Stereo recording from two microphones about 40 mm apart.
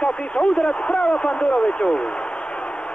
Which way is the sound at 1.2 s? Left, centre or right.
Centre.